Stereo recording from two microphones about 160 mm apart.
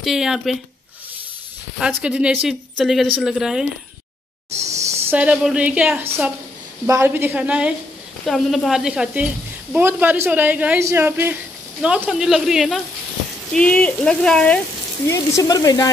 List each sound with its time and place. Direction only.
0.0 s speech: 5° right (ahead or behind)
1.8 s speech: 5° right (ahead or behind)
4.6 s a sound: 45° right (ahead or behind)
5.1 s speech: 10° right (ahead or behind)
15.0 s speech: 20° left (ahead or behind)